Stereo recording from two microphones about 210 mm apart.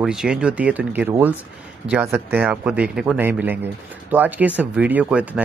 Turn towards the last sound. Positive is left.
turn(degrees=-5)  # may be behind; listen again after turning